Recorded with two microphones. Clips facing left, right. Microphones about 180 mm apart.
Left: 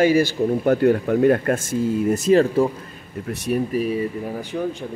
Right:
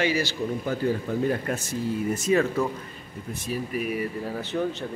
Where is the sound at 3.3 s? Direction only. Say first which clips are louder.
Left 8 dB; 70° left (ahead or behind).